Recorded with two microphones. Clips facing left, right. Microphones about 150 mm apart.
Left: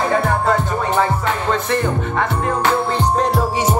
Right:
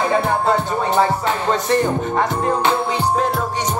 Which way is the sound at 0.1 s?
20° right (ahead or behind).